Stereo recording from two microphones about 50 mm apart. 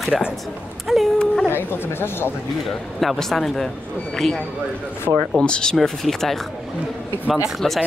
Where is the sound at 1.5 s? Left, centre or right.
Left.